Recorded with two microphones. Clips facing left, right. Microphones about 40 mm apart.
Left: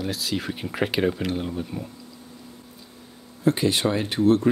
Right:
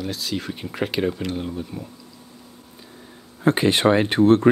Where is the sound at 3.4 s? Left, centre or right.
Right.